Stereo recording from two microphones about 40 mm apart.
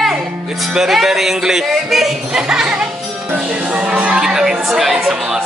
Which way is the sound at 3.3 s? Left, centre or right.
Right.